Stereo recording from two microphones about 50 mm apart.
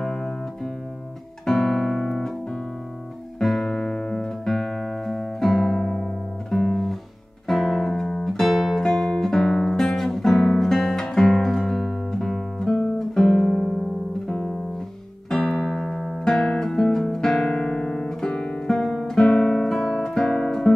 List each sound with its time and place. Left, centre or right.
0.0 s music: centre
1.4 s music: centre
3.3 s music: centre
8.8 s music: centre
10.6 s guitar: centre
15.2 s music: centre